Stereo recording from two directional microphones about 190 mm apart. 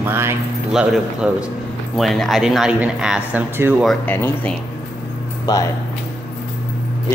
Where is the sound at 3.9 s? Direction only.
10° left (ahead or behind).